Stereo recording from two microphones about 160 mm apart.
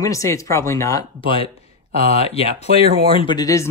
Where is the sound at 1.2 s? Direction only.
35° left (ahead or behind).